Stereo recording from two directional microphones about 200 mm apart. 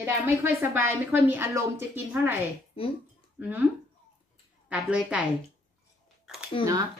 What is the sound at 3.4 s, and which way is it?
Speech, 10° right (ahead or behind).